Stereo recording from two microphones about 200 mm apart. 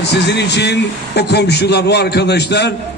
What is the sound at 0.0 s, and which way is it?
A man's voice, 60° left (ahead or behind).